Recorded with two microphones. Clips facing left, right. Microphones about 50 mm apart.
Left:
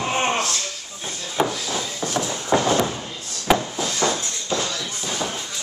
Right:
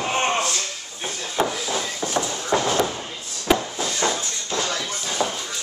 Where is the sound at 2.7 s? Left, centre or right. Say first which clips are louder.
Even; centre.